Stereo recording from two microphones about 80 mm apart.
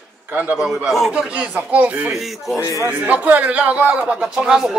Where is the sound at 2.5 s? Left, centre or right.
Left.